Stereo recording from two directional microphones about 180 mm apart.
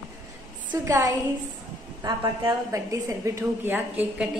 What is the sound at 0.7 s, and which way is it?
A woman's voice, 15° right (ahead or behind).